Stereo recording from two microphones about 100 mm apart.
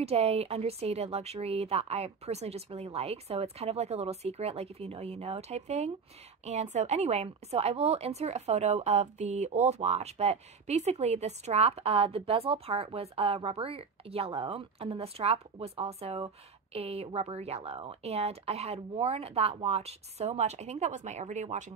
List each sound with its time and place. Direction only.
0.0 s speech: 90° right